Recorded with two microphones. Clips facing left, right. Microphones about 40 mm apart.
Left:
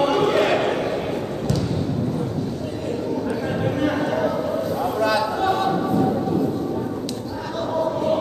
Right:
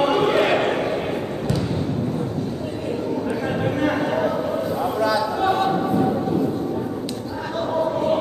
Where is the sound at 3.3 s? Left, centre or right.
Centre.